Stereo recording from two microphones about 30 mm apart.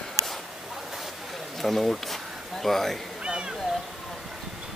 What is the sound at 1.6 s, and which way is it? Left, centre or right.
Speech, centre.